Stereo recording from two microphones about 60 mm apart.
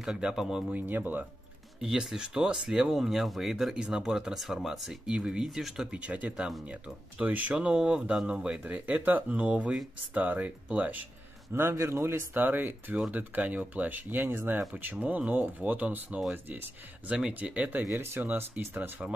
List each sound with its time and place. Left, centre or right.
0.0 s speech: centre
0.7 s speech: right
1.8 s speech: centre
5.9 s speech: right
8.6 s speech: right
11.5 s a man's voice: right
12.4 s speech: right
17.3 s speech: right
17.9 s a man's voice: right
18.2 s speech: right